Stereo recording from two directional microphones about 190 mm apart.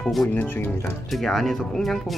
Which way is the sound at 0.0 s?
Centre (ahead or behind).